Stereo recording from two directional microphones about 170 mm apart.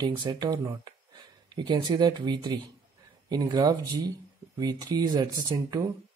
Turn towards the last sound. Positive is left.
turn(degrees=-25)  # may be behind; listen again after turning